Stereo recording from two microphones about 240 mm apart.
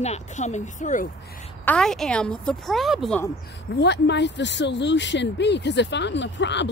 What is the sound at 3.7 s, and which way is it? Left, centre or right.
Speech, left.